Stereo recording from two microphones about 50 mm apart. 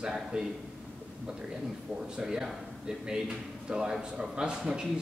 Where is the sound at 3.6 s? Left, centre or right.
Centre.